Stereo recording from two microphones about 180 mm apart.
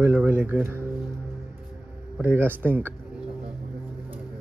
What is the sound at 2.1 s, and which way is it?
Speech, 10° right (ahead or behind).